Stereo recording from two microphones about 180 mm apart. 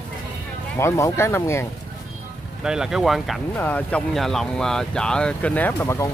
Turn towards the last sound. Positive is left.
turn(degrees=15)  # may be behind; listen again after turning